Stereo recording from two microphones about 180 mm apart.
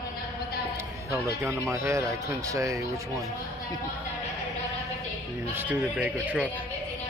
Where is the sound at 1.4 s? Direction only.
15° right (ahead or behind).